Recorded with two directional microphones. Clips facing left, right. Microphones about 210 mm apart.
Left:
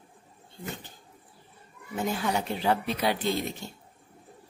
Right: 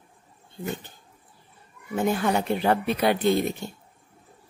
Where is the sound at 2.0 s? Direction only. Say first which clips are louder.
Right 5 dB; 55° right (ahead or behind).